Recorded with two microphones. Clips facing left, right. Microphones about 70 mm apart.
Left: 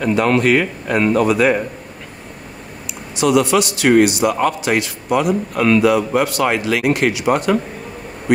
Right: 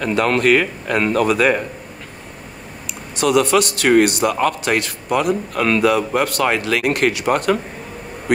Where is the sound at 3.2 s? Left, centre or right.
Right.